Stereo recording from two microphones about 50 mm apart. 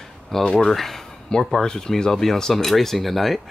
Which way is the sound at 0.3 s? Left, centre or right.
Centre.